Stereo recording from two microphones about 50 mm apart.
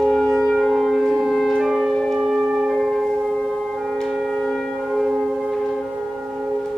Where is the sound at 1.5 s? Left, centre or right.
Centre.